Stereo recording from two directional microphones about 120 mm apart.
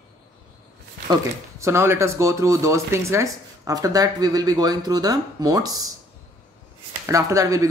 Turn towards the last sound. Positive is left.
turn(degrees=-25)  # may be behind; listen again after turning